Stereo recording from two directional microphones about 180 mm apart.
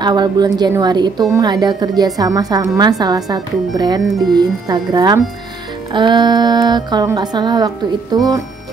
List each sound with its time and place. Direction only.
0.0 s a woman's voice: 25° right (ahead or behind)